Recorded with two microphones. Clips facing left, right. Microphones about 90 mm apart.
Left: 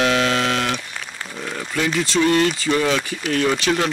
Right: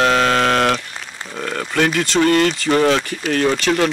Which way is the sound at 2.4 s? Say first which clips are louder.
Right 4 dB; 50° right (ahead or behind).